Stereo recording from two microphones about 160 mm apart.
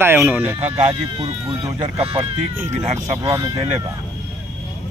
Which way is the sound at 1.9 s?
40° right (ahead or behind).